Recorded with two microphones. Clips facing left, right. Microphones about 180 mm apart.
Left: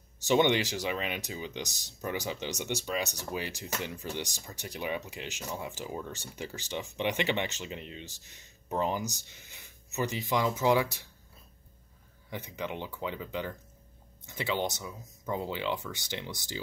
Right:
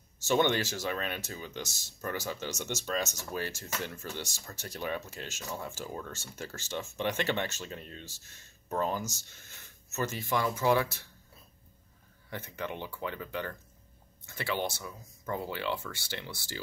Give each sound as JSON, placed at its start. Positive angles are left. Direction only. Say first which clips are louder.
{"t": 0.2, "sound": "speech", "louder": "left 2 dB", "side_deg": 15}
{"t": 12.3, "sound": "speech", "louder": "left 1 dB", "side_deg": 15}